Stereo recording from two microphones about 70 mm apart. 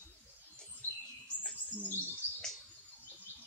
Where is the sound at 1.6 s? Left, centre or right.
Left.